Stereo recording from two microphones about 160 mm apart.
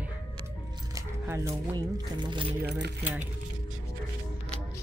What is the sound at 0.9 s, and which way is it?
Speech, 15° right (ahead or behind).